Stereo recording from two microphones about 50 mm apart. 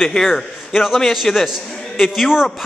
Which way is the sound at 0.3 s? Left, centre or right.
Centre.